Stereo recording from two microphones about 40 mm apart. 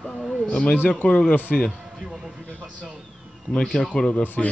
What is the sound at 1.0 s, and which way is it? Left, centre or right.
Speech, left.